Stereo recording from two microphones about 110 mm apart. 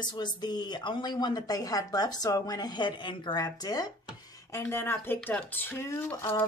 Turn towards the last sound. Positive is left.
turn(degrees=20)  # may be behind; listen again after turning